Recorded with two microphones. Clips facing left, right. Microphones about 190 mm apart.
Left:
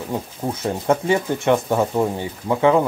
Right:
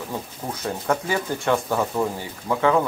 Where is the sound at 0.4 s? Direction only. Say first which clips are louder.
Left 5 dB; 25° left (ahead or behind).